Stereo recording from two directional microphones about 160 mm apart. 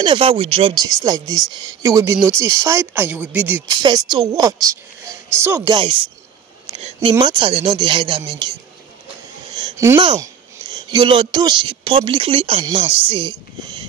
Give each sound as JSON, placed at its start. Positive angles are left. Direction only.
{"t": 0.0, "sound": "speech", "side_deg": -35}
{"t": 0.7, "sound": "speech", "side_deg": -20}
{"t": 3.6, "sound": "speech", "side_deg": -25}
{"t": 5.8, "sound": "speech", "side_deg": -30}
{"t": 9.6, "sound": "a sound", "side_deg": -20}
{"t": 10.0, "sound": "speech", "side_deg": -25}